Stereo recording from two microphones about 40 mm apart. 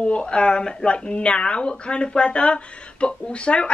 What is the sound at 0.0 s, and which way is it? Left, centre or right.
Speech, left.